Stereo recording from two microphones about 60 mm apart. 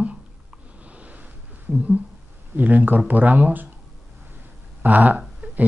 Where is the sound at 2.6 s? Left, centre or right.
Right.